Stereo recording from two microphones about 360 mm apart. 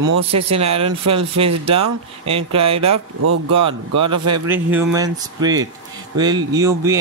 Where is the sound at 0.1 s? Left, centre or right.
Right.